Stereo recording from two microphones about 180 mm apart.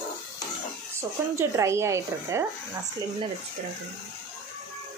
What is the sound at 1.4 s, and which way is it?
A woman's voice, 15° right (ahead or behind).